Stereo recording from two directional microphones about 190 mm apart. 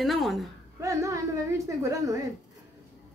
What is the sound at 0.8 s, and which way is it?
A woman's voice, 15° right (ahead or behind).